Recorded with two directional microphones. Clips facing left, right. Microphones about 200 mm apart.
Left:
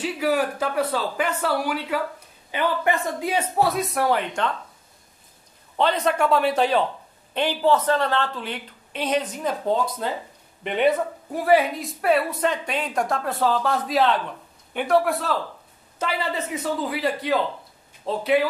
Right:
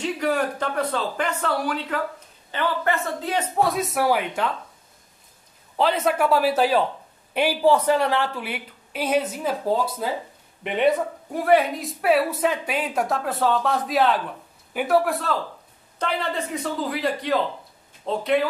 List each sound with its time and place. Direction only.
0.0 s a man's voice: 5° left (ahead or behind)
3.5 s a woman's voice: centre (ahead or behind)
5.8 s a woman's voice: 5° right (ahead or behind)